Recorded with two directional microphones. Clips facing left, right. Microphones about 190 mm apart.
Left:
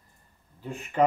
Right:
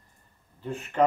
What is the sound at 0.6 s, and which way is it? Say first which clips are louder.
Speech: even; 10° left (ahead or behind).